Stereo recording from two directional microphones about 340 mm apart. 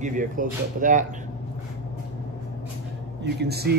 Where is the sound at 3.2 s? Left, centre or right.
Right.